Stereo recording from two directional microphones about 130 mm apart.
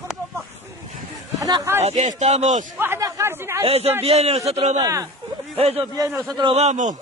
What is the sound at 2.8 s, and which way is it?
Chatter, 20° right (ahead or behind).